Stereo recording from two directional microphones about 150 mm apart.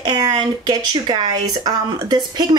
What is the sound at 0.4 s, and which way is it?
Speech, 30° right (ahead or behind).